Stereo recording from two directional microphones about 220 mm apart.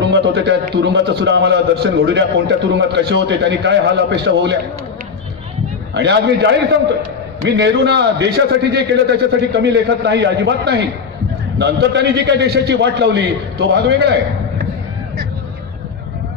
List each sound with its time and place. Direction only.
0.1 s a man's voice: 50° right (ahead or behind)
5.9 s a man's voice: 50° right (ahead or behind)